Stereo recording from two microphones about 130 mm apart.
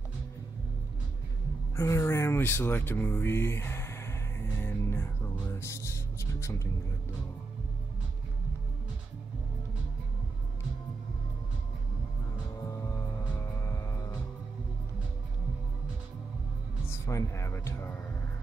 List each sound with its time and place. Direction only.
1.8 s a sound: 20° left (ahead or behind)
5.5 s music: 20° left (ahead or behind)
13.7 s music: 25° left (ahead or behind)
16.9 s music: 20° left (ahead or behind)